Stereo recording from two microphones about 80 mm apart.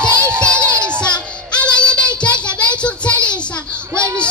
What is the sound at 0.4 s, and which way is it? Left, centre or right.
Crowd, centre.